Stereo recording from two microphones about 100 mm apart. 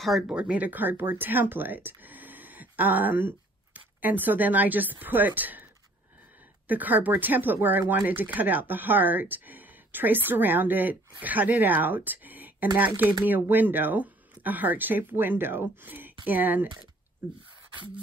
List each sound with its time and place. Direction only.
0.0 s speech: 5° right (ahead or behind)
6.7 s speech: 15° right (ahead or behind)